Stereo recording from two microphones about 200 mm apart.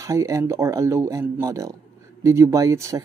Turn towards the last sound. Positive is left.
turn(degrees=-15)  # may be behind; listen again after turning